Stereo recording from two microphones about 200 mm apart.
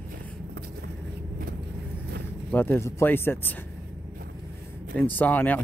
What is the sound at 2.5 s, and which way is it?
Speech, 10° left (ahead or behind).